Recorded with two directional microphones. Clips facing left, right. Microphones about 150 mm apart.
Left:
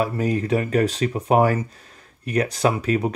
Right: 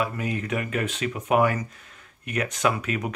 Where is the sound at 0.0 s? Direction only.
35° left (ahead or behind).